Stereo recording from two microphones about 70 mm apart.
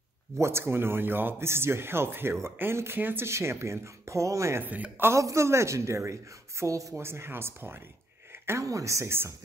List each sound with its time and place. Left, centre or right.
0.4 s speech: right
3.3 s speech: right
4.6 s speech: right
5.1 s speech: right
7.0 s speech: right
8.5 s speech: right